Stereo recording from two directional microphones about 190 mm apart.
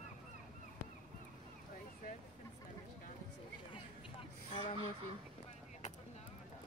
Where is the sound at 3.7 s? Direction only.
30° left (ahead or behind).